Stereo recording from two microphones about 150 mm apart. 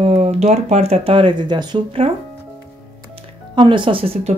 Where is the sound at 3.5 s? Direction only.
35° right (ahead or behind).